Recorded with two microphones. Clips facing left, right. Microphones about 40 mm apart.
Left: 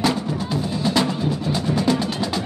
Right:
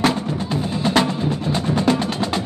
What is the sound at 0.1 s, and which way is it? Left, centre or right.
Music, right.